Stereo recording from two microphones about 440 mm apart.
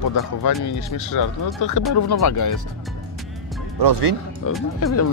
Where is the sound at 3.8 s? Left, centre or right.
Right.